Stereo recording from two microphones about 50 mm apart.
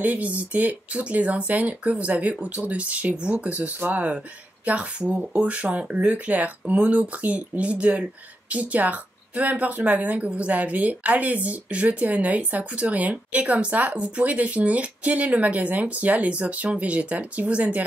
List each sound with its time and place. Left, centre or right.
0.0 s speech: right